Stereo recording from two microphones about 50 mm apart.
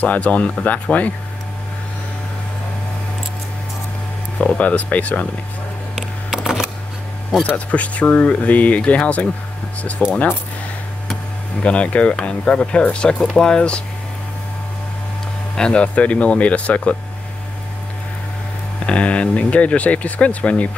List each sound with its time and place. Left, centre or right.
0.0 s speech: left
4.4 s speech: left
5.9 s a sound: centre
7.4 s speech: left
11.6 s speech: left
15.5 s speech: centre
18.9 s speech: left